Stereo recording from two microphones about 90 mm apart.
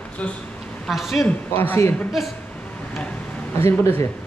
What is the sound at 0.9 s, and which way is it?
Speech, centre (ahead or behind).